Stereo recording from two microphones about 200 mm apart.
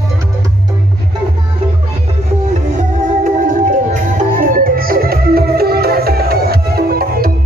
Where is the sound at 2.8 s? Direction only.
40° right (ahead or behind).